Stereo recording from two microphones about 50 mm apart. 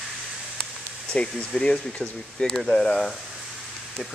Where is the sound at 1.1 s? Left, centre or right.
Left.